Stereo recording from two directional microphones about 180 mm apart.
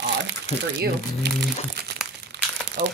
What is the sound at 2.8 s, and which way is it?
Speech, 75° right (ahead or behind).